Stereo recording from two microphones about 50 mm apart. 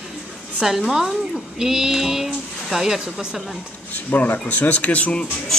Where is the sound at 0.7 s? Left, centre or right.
Centre.